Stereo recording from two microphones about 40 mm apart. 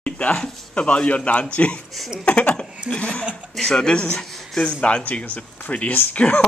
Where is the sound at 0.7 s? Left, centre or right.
Left.